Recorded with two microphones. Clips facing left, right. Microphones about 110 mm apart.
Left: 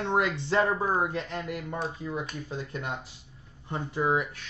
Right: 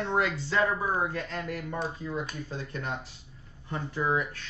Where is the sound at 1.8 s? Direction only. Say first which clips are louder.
Right 1 dB; 5° left (ahead or behind).